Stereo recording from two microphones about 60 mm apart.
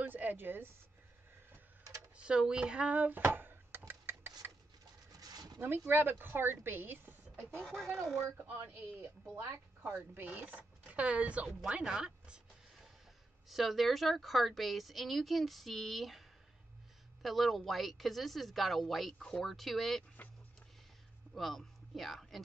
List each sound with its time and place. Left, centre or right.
0.0 s speech: right
2.1 s speech: centre
3.3 s a sound: right
5.2 s zipper: right
5.6 s a woman's voice: right
7.7 s a woman's voice: centre
8.4 s speech: right
9.4 s speech: right; by 12.4 s centre
13.5 s a woman's voice: centre
21.4 s speech: centre